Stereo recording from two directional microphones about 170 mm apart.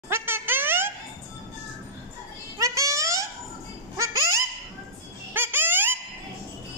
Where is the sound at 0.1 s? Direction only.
15° right (ahead or behind).